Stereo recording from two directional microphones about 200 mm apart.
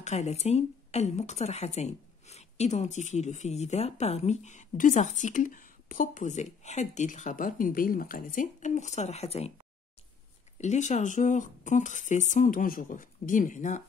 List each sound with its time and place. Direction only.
0.0 s speech: 35° left (ahead or behind)
10.6 s speech: 35° left (ahead or behind)